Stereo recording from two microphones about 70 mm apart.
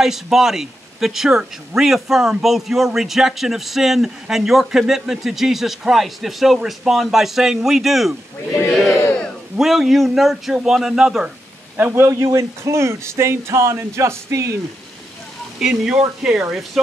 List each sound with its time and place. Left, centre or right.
0.0 s speech: centre
8.8 s battle cry: left
9.6 s speech: centre
11.2 s speech: right
15.6 s speech: centre
16.2 s speech: centre